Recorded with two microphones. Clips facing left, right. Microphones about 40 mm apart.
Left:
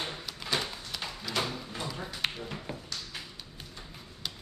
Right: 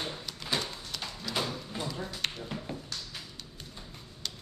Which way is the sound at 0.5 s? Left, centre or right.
Centre.